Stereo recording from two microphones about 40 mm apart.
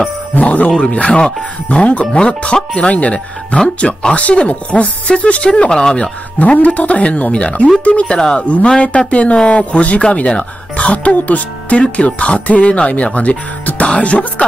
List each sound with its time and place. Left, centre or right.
0.4 s speech: left
0.7 s speech: left
6.4 s speech: left